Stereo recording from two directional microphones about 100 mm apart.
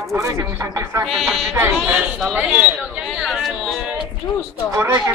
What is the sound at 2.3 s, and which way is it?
Speech, 15° right (ahead or behind).